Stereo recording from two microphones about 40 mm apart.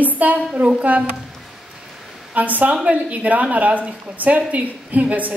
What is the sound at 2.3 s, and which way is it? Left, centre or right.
A woman's voice, right.